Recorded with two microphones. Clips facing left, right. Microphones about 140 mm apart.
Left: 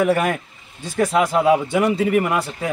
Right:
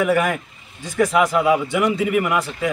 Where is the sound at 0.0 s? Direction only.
35° left (ahead or behind).